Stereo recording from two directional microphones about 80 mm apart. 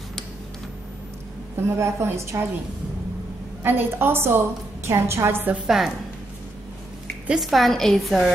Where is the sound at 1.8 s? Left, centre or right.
Right.